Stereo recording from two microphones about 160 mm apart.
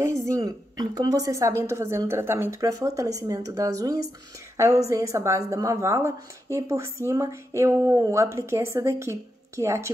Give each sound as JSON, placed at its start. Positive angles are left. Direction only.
{"t": 0.0, "sound": "a woman's voice", "side_deg": -20}